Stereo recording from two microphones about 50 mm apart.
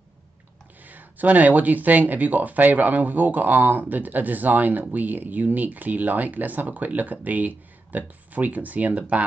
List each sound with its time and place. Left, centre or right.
0.8 s speech: right